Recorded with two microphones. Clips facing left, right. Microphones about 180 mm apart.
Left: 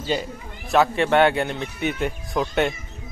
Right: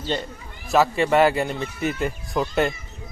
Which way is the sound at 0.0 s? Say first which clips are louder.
Left 2 dB; 5° left (ahead or behind).